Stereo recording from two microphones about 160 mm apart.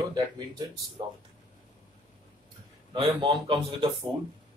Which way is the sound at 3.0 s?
35° right (ahead or behind).